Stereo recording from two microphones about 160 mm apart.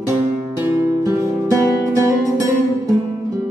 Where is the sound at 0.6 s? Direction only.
15° right (ahead or behind).